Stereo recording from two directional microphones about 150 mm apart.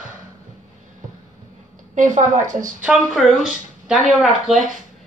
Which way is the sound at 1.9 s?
55° right (ahead or behind).